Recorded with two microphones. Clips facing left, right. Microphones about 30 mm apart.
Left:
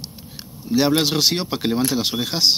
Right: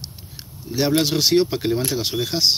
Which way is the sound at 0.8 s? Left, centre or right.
Left.